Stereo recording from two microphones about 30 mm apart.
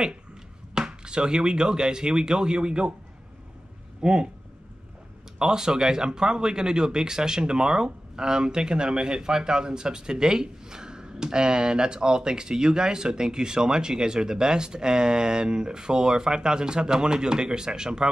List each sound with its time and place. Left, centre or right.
0.7 s speech: right
4.0 s speech: right
5.4 s speech: right